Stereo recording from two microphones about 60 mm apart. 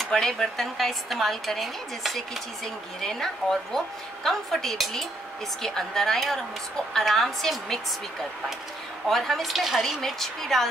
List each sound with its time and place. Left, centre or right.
0.0 s speech: centre